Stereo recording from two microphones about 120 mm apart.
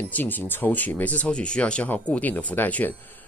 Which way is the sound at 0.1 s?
15° left (ahead or behind).